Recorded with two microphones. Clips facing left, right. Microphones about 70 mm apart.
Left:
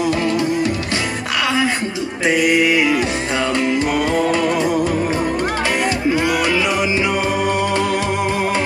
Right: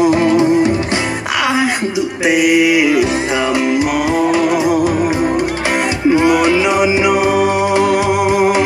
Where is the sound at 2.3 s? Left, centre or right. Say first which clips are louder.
Right 3 dB; centre.